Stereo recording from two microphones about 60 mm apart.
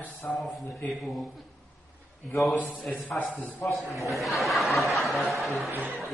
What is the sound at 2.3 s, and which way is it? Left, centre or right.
Speech, centre.